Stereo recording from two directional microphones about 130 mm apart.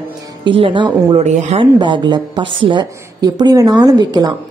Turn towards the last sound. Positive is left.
turn(degrees=-30)  # may be behind; listen again after turning